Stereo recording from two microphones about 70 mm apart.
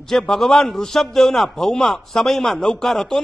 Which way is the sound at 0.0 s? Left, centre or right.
Centre.